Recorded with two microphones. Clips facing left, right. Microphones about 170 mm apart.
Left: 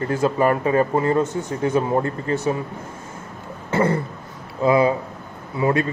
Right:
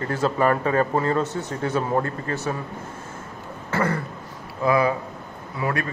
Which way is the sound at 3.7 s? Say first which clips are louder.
Left 4 dB; 25° left (ahead or behind).